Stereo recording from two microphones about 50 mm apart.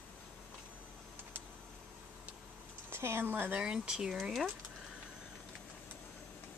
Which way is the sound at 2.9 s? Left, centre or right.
Right.